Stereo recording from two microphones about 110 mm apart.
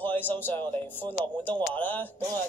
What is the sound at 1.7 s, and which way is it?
Speech, 15° left (ahead or behind).